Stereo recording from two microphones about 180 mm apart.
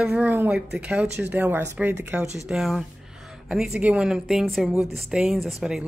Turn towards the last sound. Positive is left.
turn(degrees=0)  # may be behind; listen again after turning